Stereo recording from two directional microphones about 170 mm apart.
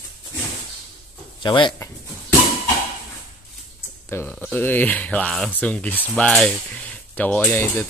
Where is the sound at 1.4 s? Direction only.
25° left (ahead or behind).